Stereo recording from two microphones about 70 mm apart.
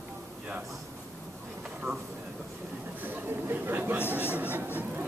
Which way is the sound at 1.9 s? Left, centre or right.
Right.